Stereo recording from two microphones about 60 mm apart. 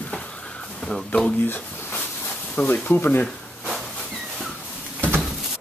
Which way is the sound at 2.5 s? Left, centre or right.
Left.